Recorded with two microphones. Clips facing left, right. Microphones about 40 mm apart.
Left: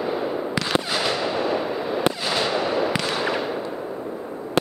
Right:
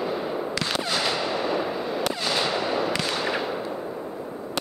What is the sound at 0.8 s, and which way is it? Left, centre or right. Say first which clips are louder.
Fireworks: left 2 dB; centre.